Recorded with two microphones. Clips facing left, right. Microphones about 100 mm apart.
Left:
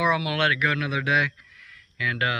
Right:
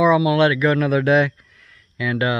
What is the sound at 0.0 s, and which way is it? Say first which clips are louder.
A man's voice: right 9 dB; 25° right (ahead or behind).